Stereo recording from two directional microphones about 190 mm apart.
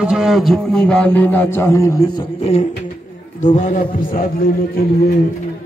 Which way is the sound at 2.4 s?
35° left (ahead or behind).